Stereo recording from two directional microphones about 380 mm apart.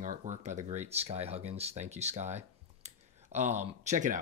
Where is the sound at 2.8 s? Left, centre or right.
Centre.